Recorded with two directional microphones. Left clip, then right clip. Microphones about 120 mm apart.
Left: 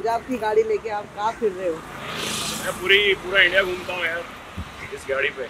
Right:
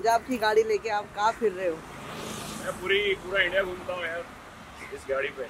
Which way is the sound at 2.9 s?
5° left (ahead or behind).